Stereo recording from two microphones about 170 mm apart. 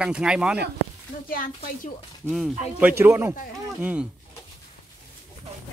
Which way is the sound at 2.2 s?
Centre (ahead or behind).